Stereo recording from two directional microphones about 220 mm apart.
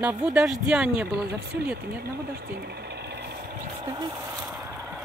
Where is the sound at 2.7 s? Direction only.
50° right (ahead or behind).